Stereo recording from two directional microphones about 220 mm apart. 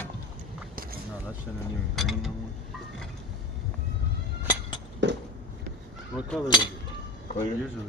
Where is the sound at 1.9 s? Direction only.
Centre (ahead or behind).